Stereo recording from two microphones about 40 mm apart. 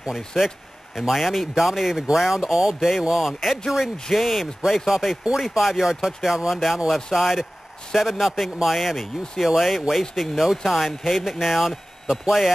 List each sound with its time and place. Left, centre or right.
0.3 s speech: centre